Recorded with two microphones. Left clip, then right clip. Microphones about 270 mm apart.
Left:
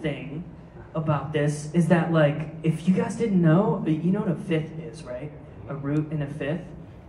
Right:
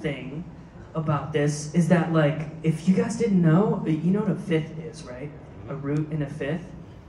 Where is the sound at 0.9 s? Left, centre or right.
Left.